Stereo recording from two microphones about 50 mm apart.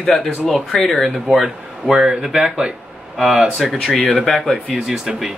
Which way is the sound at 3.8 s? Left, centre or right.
Centre.